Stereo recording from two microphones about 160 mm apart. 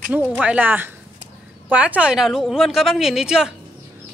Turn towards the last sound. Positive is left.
turn(degrees=-5)  # may be behind; listen again after turning